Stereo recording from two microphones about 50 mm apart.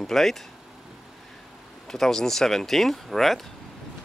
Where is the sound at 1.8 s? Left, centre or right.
Centre.